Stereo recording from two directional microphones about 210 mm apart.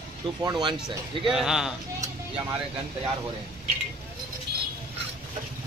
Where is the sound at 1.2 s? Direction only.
Centre (ahead or behind).